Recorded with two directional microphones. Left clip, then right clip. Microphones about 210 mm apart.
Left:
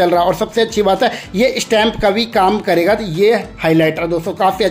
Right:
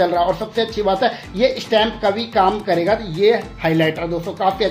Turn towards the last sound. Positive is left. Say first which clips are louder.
# left 4 dB
turn(degrees=25)  # may be behind; listen again after turning